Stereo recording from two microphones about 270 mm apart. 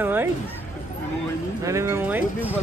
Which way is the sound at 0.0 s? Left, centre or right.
Centre.